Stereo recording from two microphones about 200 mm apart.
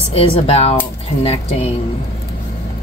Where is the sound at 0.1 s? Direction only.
30° left (ahead or behind).